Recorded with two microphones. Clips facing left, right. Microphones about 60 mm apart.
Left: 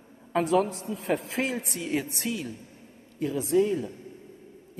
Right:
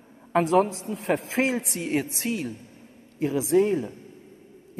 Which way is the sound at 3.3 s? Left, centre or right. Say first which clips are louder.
Right 3 dB; right.